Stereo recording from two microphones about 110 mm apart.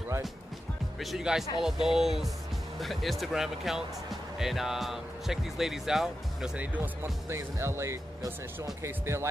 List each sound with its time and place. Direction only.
0.9 s speech: centre (ahead or behind); by 9.3 s 25° right (ahead or behind)